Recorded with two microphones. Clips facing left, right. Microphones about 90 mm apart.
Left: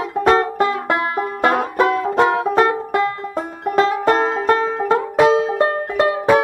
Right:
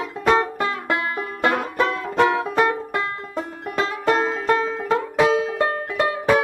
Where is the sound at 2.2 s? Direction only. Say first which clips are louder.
Left 2 dB; 35° left (ahead or behind).